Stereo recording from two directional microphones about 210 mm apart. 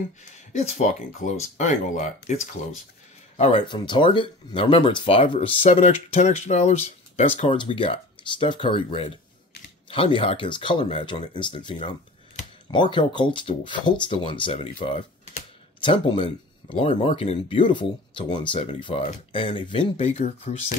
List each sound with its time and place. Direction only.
0.5 s speech: 30° left (ahead or behind)